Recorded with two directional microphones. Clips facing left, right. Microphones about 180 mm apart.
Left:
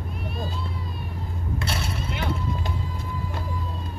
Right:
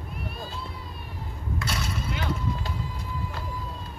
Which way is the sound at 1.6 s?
25° left (ahead or behind).